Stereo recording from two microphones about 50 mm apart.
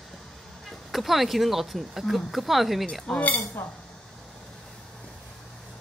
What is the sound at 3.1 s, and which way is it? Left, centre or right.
Speech, left.